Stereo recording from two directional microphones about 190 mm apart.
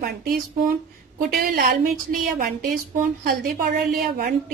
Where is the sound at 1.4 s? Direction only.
50° right (ahead or behind).